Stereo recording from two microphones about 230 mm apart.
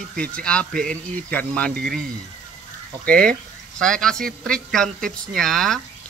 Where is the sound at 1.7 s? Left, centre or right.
Right.